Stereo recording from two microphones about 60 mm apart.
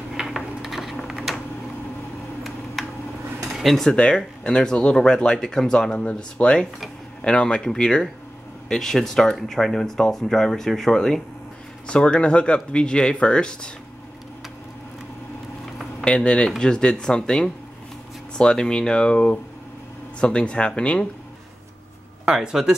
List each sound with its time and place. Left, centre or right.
0.1 s a sound: centre
2.8 s tick-tock: centre
3.4 s dishes: centre
3.9 s speech: centre
11.9 s speech: centre
16.0 s speech: centre
22.2 s speech: centre